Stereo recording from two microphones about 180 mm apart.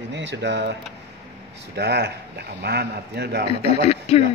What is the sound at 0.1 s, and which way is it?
Speech, 75° right (ahead or behind).